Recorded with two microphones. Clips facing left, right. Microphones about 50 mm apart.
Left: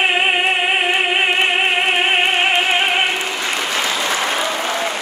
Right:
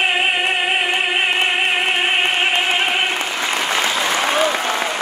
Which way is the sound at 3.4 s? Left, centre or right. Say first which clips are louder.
Right 2 dB; centre.